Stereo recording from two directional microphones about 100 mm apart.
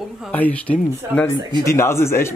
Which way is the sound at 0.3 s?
15° left (ahead or behind).